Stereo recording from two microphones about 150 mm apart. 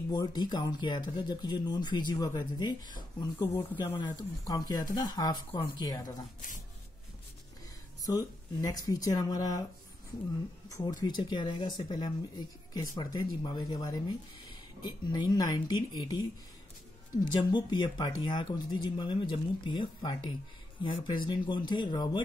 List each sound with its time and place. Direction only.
0.1 s speech: 25° left (ahead or behind)
3.7 s speech: 30° left (ahead or behind)
8.0 s speech: 25° left (ahead or behind)
10.7 s speech: 25° left (ahead or behind)
17.3 s speech: 30° left (ahead or behind)